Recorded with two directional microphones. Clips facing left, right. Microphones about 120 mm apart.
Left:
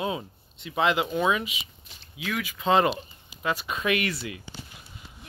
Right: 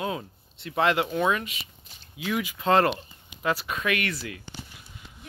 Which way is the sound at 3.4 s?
15° left (ahead or behind).